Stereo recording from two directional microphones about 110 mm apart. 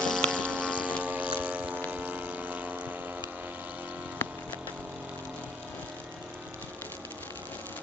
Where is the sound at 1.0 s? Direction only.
10° right (ahead or behind).